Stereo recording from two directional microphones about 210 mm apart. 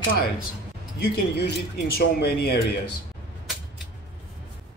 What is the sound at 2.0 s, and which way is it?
Speech, 50° left (ahead or behind).